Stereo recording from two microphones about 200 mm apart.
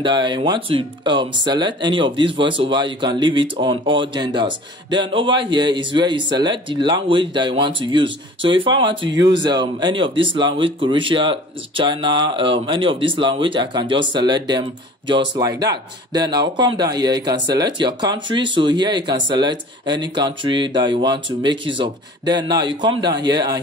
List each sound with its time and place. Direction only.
0.0 s speech: 25° right (ahead or behind)